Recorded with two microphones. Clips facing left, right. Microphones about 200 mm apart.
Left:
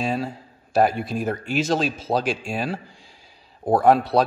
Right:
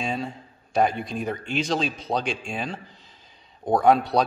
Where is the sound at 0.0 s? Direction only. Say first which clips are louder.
Left 4 dB; 5° left (ahead or behind).